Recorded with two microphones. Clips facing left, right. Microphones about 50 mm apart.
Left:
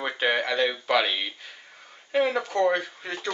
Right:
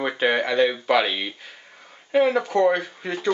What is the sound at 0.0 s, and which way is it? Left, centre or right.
Speech, centre.